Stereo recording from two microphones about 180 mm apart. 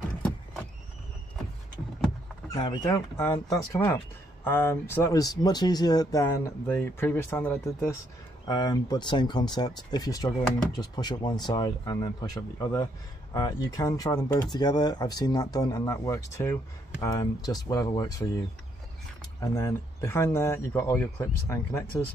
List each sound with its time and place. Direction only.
2.5 s speech: 25° left (ahead or behind)
19.4 s speech: 15° left (ahead or behind)